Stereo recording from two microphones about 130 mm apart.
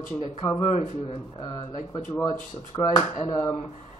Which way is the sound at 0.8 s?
85° left.